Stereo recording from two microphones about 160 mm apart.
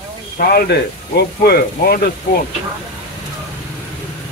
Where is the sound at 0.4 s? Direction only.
75° left (ahead or behind).